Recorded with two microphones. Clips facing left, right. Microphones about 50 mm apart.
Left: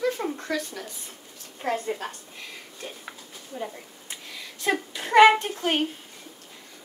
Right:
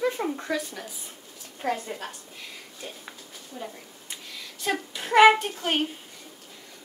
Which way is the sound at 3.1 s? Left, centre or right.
Centre.